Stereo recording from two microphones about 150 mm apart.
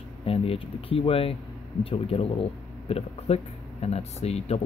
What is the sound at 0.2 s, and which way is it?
Speech, 40° left (ahead or behind).